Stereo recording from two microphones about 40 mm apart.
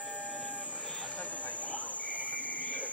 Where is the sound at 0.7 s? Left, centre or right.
Left.